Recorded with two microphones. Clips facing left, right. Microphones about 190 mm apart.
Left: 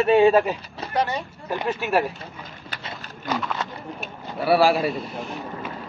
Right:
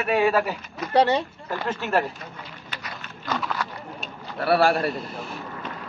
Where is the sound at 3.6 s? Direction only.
25° left (ahead or behind).